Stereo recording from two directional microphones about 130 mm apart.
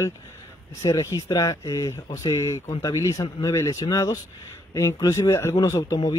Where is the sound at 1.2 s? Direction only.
25° left (ahead or behind).